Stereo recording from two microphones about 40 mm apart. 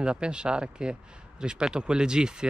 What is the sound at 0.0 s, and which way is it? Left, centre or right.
Speech, right.